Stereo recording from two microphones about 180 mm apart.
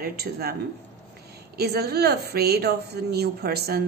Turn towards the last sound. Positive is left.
turn(degrees=-60)  # may be behind; listen again after turning